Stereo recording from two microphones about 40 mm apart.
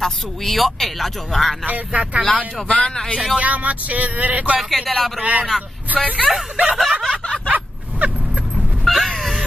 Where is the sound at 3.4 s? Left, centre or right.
Right.